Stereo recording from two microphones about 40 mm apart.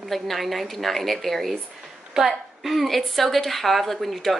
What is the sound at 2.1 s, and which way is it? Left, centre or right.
Speech, centre.